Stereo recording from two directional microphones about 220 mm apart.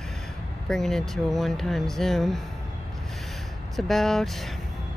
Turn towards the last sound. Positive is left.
turn(degrees=0)  # may be behind; listen again after turning